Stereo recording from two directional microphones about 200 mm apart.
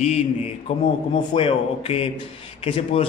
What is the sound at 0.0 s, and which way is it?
A man's voice, 30° left (ahead or behind).